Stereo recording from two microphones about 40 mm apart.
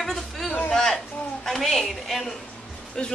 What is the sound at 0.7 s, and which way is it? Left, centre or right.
Speech, centre.